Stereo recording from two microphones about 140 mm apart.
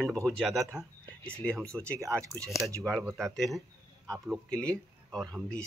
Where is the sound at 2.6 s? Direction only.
20° right (ahead or behind).